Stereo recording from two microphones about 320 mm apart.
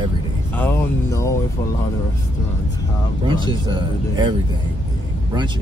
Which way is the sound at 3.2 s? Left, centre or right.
Centre.